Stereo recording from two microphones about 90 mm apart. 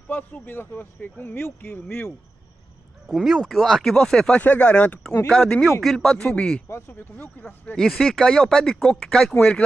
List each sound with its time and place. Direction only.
0.1 s speech: 25° left (ahead or behind)
3.1 s speech: centre (ahead or behind)
4.4 s speech: 15° left (ahead or behind)
6.9 s speech: 20° left (ahead or behind)
7.7 s speech: centre (ahead or behind)